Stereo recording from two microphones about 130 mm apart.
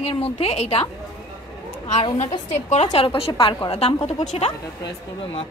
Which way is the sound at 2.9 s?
40° left (ahead or behind).